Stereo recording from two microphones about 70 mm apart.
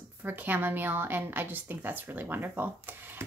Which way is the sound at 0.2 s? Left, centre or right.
Right.